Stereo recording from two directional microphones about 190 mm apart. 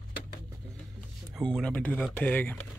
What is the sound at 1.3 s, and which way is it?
Speech, centre (ahead or behind).